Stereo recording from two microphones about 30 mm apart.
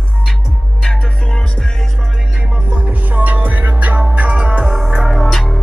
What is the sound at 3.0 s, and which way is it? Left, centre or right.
Music, right.